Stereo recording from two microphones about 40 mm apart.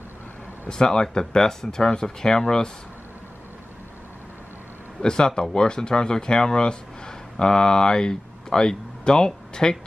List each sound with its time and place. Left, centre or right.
0.7 s speech: left
5.0 s speech: left